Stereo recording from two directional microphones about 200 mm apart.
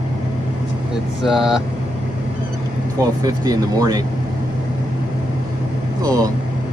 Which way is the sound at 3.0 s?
20° right (ahead or behind).